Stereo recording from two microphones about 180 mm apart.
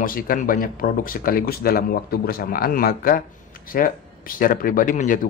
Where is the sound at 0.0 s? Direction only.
50° left (ahead or behind).